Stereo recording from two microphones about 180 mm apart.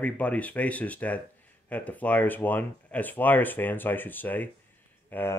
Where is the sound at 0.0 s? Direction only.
10° left (ahead or behind).